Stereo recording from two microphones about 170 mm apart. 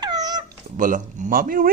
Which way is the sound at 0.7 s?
50° right (ahead or behind).